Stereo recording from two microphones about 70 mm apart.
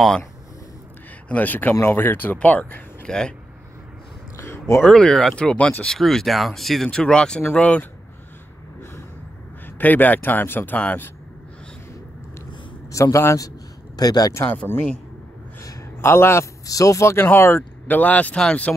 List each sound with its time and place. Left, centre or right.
1.3 s speech: left
4.7 s speech: centre
9.8 s speech: left
12.9 s speech: left
13.9 s speech: left
14.7 s speech: left
16.0 s a man's voice: left
16.6 s speech: left; by 18.8 s centre